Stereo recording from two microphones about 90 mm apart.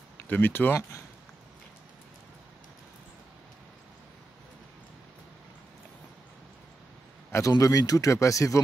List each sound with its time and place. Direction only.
0.3 s speech: 20° left (ahead or behind)
7.2 s speech: 30° left (ahead or behind)